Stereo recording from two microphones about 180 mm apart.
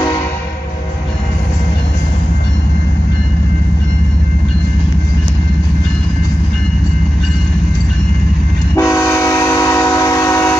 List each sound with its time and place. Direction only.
8.7 s train: 15° left (ahead or behind)